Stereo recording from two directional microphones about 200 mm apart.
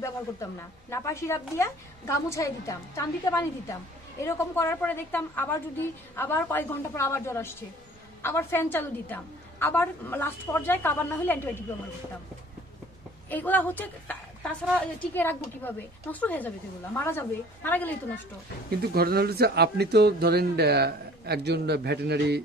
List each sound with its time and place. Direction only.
0.0 s a woman's voice: 15° left (ahead or behind)
13.3 s a woman's voice: 10° left (ahead or behind)
18.7 s speech: 50° right (ahead or behind)